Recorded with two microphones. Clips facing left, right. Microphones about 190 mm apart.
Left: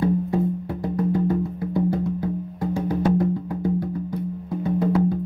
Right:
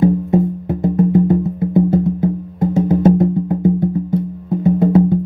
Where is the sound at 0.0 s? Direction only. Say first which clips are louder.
Right 7 dB; 20° right (ahead or behind).